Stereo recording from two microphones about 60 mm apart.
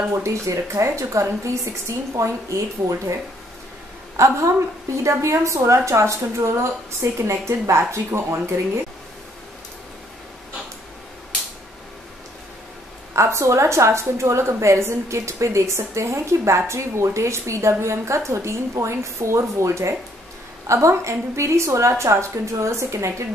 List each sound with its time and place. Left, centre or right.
0.2 s a woman's voice: right
4.2 s a woman's voice: right
13.1 s a woman's voice: right